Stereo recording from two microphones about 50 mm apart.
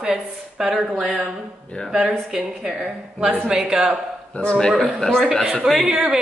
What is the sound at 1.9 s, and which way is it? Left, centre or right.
A woman's voice, centre.